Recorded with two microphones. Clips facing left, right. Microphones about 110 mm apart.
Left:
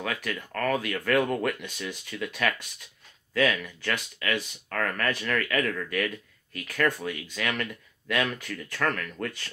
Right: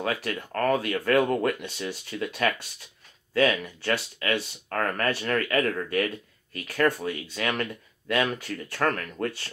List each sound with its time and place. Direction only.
0.0 s speech: 30° right (ahead or behind)